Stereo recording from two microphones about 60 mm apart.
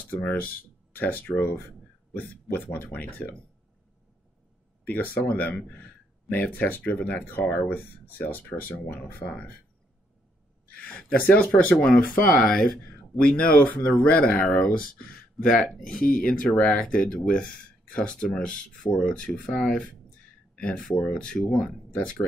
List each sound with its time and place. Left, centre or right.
0.1 s speech: left
4.8 s speech: left
9.2 s speech: centre
10.8 s speech: centre
15.4 s speech: centre
16.5 s speech: centre